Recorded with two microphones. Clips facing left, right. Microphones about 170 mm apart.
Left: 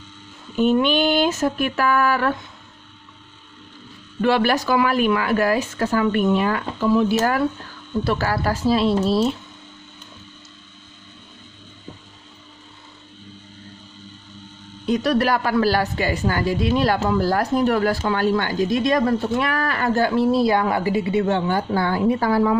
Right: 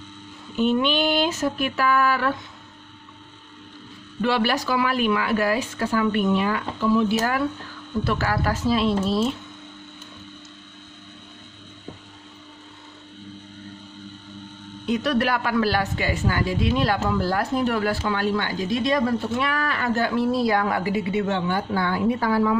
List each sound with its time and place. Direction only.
0.6 s speech: 45° left (ahead or behind)
4.2 s a woman's voice: 50° left (ahead or behind); by 9.3 s 35° left (ahead or behind)
14.9 s a woman's voice: 40° left (ahead or behind)